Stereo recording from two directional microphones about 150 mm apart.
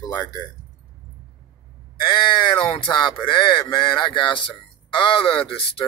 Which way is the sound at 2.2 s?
35° left (ahead or behind).